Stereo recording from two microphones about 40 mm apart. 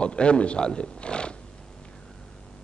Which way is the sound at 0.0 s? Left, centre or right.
Left.